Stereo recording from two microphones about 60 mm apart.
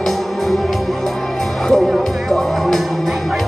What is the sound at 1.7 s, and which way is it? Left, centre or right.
Music, centre.